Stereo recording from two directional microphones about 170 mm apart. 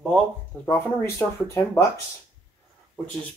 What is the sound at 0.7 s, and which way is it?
Speech, 15° left (ahead or behind).